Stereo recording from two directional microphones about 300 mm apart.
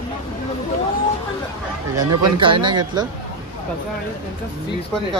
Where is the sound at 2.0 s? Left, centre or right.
Centre.